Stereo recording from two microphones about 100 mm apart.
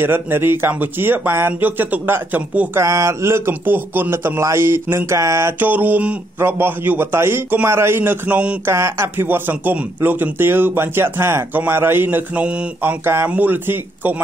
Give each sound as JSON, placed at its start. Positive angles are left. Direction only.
{"t": 0.0, "sound": "a man's voice", "side_deg": -20}
{"t": 2.8, "sound": "a man's voice", "side_deg": -30}
{"t": 5.6, "sound": "a man's voice", "side_deg": -15}
{"t": 8.6, "sound": "a man's voice", "side_deg": -25}